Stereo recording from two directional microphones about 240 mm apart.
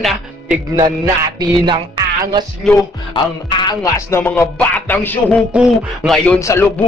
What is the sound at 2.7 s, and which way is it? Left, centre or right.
Music, centre.